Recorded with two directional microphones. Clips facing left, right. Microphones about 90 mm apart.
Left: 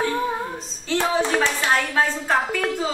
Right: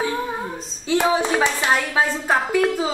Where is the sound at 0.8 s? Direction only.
15° right (ahead or behind).